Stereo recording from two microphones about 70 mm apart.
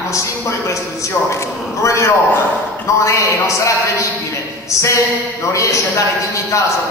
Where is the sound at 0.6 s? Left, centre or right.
Left.